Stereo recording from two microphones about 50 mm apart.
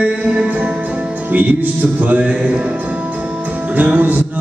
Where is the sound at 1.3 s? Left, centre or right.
Right.